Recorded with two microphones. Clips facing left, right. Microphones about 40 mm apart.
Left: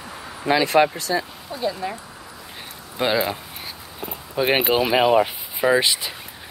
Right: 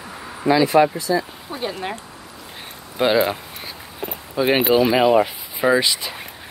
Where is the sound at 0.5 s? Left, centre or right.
Left.